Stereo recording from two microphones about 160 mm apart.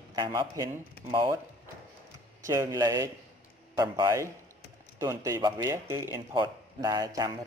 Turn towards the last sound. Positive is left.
turn(degrees=-25)  # may be behind; listen again after turning